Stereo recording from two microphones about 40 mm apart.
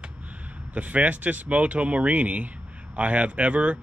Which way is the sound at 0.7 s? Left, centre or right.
Right.